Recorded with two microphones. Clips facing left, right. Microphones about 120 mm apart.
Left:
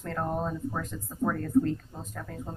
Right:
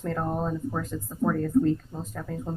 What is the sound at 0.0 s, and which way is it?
Speech, 5° right (ahead or behind).